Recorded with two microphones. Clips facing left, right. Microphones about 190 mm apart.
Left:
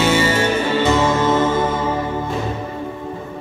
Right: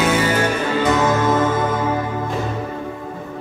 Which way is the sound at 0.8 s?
25° left (ahead or behind).